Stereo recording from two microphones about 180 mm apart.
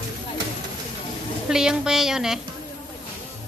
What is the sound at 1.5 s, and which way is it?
Speech, 5° right (ahead or behind).